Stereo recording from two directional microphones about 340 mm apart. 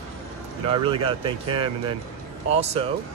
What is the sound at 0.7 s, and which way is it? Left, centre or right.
Speech, centre.